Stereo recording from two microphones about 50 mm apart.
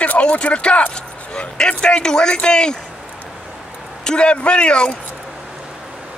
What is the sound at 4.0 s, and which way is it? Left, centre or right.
Speech, centre.